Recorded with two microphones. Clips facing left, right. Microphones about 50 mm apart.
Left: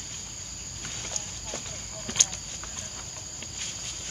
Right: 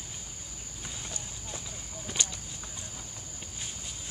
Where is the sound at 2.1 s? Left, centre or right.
Left.